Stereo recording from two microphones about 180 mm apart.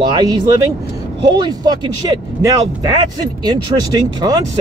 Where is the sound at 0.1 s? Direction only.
20° right (ahead or behind).